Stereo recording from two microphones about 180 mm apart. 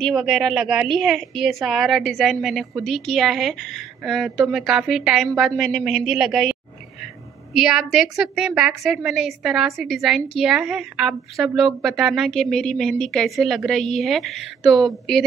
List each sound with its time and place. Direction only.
0.0 s a woman's voice: centre (ahead or behind)
7.5 s a woman's voice: centre (ahead or behind)